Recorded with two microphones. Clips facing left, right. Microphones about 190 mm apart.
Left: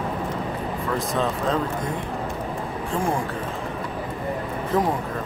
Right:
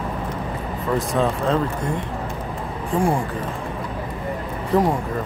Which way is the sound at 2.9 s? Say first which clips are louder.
Right 6 dB; centre (ahead or behind).